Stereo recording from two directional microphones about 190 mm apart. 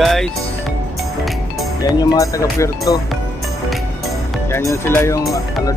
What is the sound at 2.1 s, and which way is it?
Speech, 15° left (ahead or behind).